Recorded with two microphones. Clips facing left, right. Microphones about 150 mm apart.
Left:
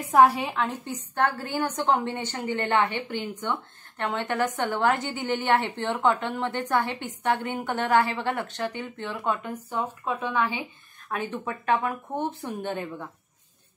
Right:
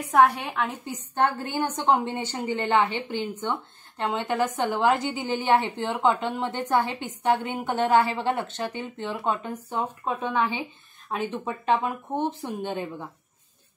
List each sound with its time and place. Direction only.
0.0 s a woman's voice: centre (ahead or behind)
0.8 s a woman's voice: 15° right (ahead or behind)